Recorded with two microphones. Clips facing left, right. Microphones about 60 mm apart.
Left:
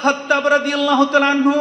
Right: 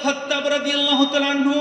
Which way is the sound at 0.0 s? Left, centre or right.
Left.